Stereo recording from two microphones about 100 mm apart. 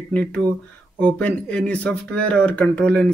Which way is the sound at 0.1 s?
15° left (ahead or behind).